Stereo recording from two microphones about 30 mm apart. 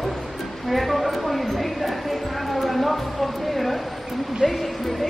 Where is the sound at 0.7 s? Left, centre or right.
Centre.